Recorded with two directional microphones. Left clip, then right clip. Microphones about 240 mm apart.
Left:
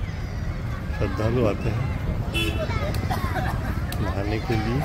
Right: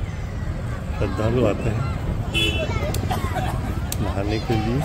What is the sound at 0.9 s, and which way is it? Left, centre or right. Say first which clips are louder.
Speech: right 3 dB; centre.